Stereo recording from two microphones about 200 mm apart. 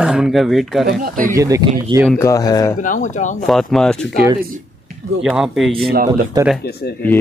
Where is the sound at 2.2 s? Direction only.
15° left (ahead or behind).